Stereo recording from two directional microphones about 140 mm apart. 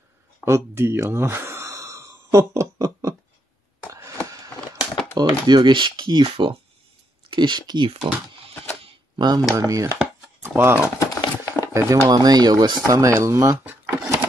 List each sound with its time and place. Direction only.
0.5 s gasp: 15° right (ahead or behind)
5.1 s speech: 30° right (ahead or behind)
8.8 s a sound: 30° right (ahead or behind)
9.6 s speech: 25° right (ahead or behind)
9.9 s chopping: 15° right (ahead or behind)
11.0 s a sound: 25° left (ahead or behind)
11.7 s speech: 25° right (ahead or behind)